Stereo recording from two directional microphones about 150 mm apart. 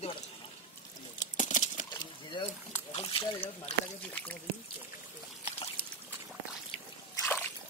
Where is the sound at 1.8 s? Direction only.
30° left (ahead or behind).